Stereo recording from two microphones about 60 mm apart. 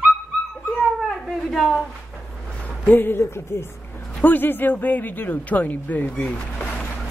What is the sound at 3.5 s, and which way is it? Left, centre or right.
Speech, left.